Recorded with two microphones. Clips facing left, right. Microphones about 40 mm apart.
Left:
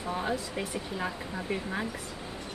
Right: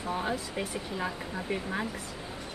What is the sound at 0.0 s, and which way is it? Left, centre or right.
Speech, centre.